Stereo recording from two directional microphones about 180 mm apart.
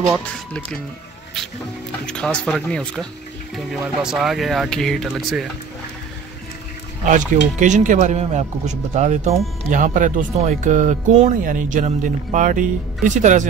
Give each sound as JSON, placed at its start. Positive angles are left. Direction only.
{"t": 2.0, "sound": "speech", "side_deg": 5}
{"t": 7.5, "sound": "speech", "side_deg": -40}